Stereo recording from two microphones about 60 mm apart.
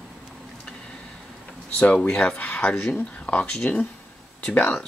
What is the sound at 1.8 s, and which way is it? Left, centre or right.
Speech, centre.